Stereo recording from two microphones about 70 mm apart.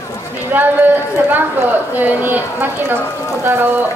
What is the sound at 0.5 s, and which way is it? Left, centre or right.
Speech, right.